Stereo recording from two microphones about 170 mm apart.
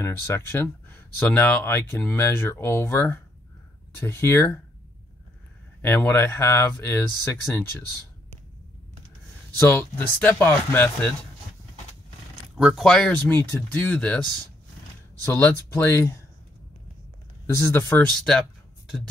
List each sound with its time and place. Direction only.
0.0 s speech: 15° left (ahead or behind)
5.8 s speech: 10° left (ahead or behind)
9.6 s speech: 10° left (ahead or behind)
12.5 s speech: centre (ahead or behind)
15.2 s speech: 15° left (ahead or behind)
17.6 s speech: 15° left (ahead or behind)